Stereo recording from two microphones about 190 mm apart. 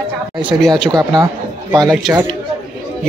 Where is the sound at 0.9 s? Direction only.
20° right (ahead or behind).